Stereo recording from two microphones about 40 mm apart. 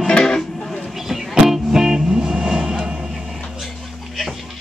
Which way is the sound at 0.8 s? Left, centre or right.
Centre.